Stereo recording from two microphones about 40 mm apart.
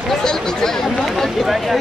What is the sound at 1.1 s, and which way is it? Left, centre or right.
Speech, centre.